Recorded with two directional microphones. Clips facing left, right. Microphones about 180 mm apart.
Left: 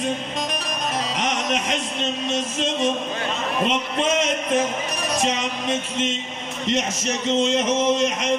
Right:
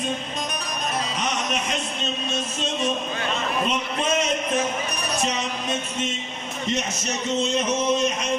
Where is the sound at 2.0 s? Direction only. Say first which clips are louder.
Left 4 dB; 90° left.